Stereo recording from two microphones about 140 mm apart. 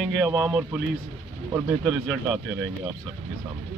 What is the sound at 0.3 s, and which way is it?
A man's voice, 20° right (ahead or behind).